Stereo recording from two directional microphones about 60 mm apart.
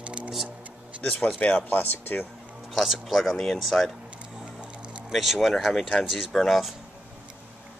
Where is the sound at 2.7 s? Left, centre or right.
Centre.